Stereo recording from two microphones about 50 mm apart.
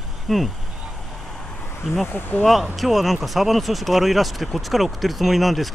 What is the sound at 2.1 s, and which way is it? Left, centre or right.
Speech, left.